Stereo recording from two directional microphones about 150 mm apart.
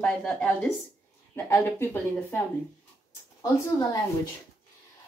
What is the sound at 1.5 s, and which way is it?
Speech, 15° left (ahead or behind).